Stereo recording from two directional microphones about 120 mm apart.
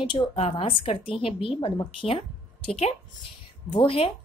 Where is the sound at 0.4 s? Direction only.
55° left (ahead or behind).